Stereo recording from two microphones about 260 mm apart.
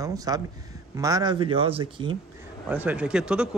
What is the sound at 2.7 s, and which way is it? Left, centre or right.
Speech, centre.